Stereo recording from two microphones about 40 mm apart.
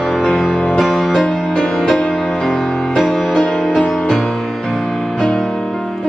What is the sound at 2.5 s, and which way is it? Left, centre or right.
Music, centre.